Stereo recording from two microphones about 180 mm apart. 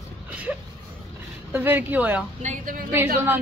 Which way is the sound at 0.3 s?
5° right (ahead or behind).